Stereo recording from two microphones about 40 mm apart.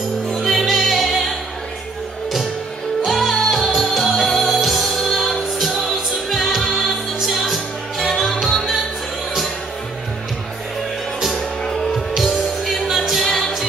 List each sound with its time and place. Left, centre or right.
0.3 s music: centre
3.1 s music: centre
7.2 s music: centre
11.3 s music: centre
12.2 s music: centre